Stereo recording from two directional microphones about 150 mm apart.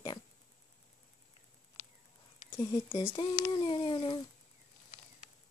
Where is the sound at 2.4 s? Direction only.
20° left (ahead or behind).